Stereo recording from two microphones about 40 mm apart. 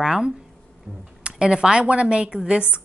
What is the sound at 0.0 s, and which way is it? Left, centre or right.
Speech, centre.